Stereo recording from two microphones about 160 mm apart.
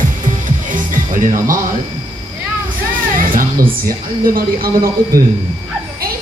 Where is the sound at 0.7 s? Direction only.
55° right (ahead or behind).